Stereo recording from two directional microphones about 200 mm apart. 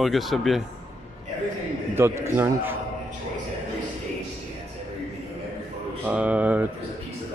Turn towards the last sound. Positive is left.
turn(degrees=-10)  # may be behind; listen again after turning